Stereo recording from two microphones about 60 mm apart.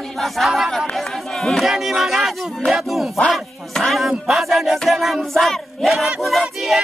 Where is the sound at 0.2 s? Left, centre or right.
Centre.